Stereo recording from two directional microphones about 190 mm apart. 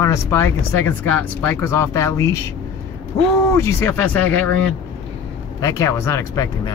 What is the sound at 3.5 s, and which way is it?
Speech, 15° left (ahead or behind).